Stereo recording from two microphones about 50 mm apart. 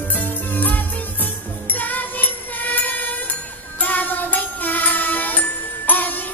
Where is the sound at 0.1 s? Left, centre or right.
Left.